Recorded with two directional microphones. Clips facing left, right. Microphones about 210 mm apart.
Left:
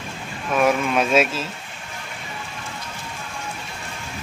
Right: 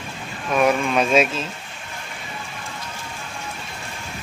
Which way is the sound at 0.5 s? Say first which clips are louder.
Even; 5° left (ahead or behind).